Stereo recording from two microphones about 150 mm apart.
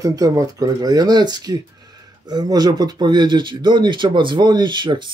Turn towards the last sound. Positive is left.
turn(degrees=-30)  # may be behind; listen again after turning